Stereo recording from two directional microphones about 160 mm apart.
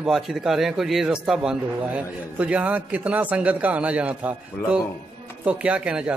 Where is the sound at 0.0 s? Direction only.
5° right (ahead or behind).